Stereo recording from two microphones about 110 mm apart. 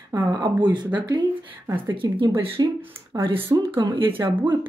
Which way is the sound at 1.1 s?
30° right (ahead or behind).